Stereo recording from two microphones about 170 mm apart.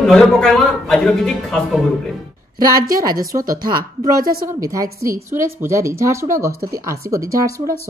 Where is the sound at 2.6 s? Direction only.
20° right (ahead or behind).